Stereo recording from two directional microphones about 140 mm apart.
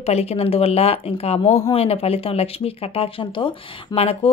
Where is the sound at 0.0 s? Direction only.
50° left (ahead or behind).